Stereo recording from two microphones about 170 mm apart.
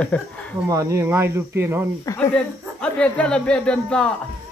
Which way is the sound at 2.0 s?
20° left (ahead or behind).